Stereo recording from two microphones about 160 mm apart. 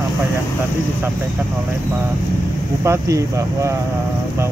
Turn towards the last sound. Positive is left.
turn(degrees=-20)  # may be behind; listen again after turning